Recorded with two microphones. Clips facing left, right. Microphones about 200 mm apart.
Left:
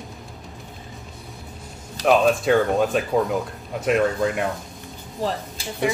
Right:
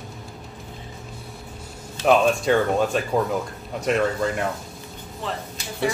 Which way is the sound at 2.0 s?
Centre (ahead or behind).